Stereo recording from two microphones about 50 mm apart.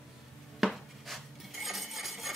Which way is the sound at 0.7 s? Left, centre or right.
Centre.